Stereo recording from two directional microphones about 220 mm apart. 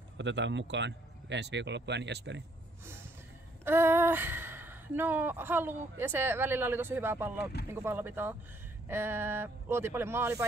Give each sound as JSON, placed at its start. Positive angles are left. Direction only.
{"t": 0.2, "sound": "speech", "side_deg": -55}
{"t": 3.6, "sound": "speech", "side_deg": -10}